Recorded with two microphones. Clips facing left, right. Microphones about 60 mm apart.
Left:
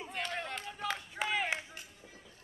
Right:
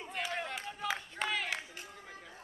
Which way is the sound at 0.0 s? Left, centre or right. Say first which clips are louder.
Right 1 dB; centre.